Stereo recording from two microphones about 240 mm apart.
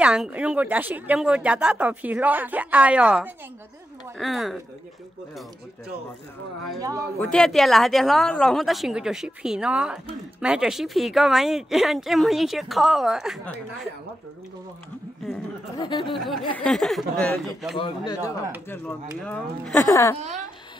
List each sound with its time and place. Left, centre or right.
0.0 s speech: centre
6.8 s a man's voice: centre
7.2 s speech: centre
15.8 s speech: centre
16.1 s speech: centre
17.7 s speech: left
18.7 s speech: centre